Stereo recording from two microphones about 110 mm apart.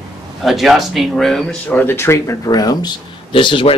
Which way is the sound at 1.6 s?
15° left (ahead or behind).